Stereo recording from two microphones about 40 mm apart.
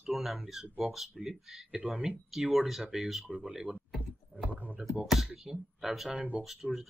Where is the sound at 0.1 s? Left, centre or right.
Centre.